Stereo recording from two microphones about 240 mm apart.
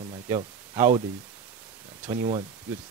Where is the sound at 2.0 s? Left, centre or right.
Right.